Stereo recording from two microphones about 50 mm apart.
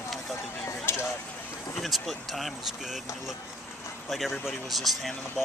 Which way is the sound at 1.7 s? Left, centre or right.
Centre.